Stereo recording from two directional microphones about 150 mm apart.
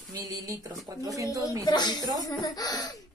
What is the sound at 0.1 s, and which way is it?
Speech, 25° right (ahead or behind).